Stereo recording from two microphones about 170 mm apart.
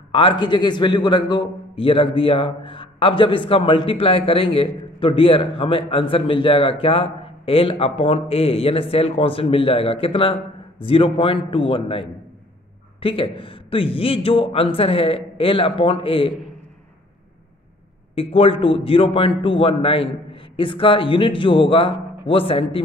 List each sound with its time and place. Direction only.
0.1 s a man's voice: 30° left (ahead or behind)
18.1 s a man's voice: 35° left (ahead or behind)